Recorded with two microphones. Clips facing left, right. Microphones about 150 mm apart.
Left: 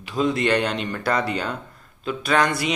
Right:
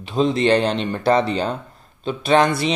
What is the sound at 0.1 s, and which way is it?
A man's voice, 25° right (ahead or behind).